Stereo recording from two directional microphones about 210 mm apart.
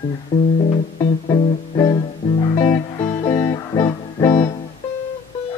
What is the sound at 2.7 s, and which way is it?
Music, 30° left (ahead or behind).